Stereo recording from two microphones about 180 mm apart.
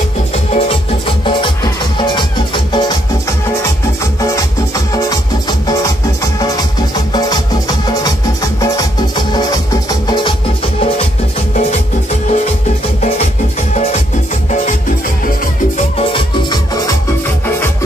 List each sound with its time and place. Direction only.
0.5 s music: 35° left (ahead or behind)
4.7 s music: 20° left (ahead or behind)
7.1 s music: 20° left (ahead or behind); by 12.4 s 40° left (ahead or behind)
16.0 s music: 25° left (ahead or behind)